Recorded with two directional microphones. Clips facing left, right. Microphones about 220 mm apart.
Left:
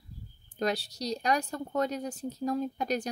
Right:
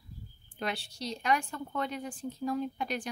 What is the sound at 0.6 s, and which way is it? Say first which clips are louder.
A woman's voice: left 6 dB; 40° left (ahead or behind).